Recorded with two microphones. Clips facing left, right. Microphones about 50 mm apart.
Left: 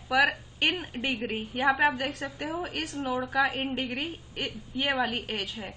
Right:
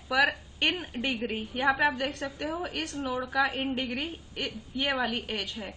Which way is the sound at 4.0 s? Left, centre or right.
Centre.